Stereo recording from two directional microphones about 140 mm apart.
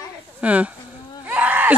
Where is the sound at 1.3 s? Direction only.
10° right (ahead or behind).